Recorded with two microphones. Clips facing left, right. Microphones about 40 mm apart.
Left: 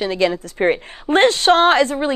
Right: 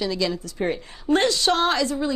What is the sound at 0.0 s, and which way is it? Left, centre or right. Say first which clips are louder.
A woman's voice: left 6 dB; left.